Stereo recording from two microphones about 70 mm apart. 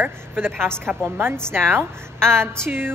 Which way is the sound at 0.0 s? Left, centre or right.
Right.